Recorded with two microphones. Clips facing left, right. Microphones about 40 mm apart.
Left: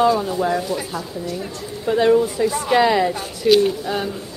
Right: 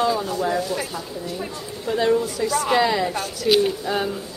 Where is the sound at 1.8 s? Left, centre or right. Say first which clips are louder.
Left 5 dB; centre.